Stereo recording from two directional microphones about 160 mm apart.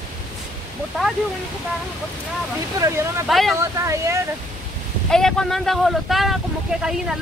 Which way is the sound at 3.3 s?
Centre (ahead or behind).